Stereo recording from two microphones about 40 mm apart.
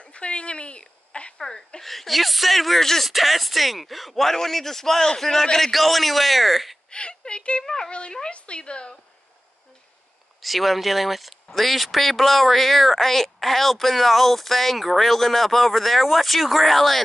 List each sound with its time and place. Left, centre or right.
0.0 s a sound: left
1.8 s a man's voice: centre
5.7 s speech: centre
6.9 s speech: left
7.6 s a man's voice: centre
10.4 s speech: centre